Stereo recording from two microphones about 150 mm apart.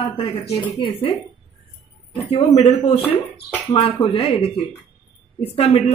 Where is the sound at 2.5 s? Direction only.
45° left (ahead or behind).